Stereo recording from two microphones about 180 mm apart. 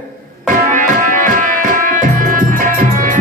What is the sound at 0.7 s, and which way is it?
Music, 50° right (ahead or behind).